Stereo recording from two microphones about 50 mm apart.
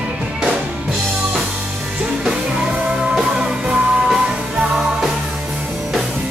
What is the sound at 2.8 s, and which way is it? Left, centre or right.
Music, centre.